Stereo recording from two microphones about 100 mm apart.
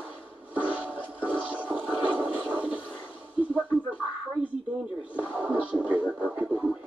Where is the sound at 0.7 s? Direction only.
15° right (ahead or behind).